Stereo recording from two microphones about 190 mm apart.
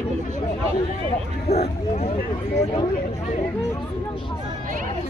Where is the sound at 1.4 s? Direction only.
35° left (ahead or behind).